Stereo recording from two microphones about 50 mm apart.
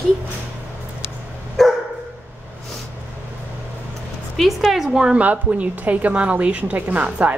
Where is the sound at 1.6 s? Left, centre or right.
Centre.